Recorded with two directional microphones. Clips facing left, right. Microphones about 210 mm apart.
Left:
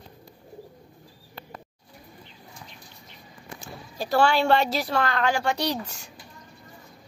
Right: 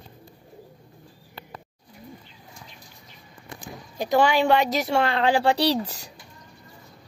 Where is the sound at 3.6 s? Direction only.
20° right (ahead or behind); by 6.0 s 35° right (ahead or behind).